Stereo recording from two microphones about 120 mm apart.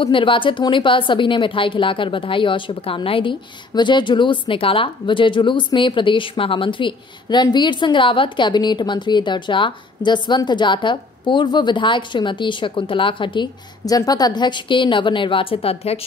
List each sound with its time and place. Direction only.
0.0 s a woman's voice: 45° left (ahead or behind)
13.8 s a woman's voice: 30° left (ahead or behind); by 16.0 s 60° left (ahead or behind)